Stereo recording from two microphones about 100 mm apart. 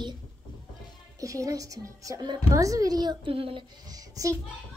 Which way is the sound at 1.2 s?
35° right (ahead or behind).